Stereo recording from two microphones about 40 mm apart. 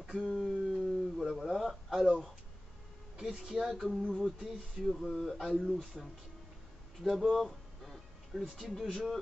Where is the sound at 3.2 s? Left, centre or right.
Centre.